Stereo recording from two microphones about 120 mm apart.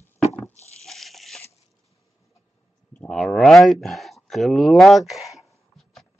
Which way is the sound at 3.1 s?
5° left (ahead or behind).